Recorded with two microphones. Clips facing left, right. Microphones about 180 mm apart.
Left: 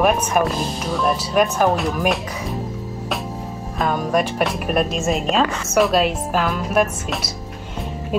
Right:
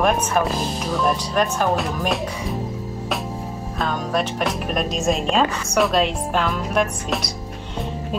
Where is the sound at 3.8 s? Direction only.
10° left (ahead or behind).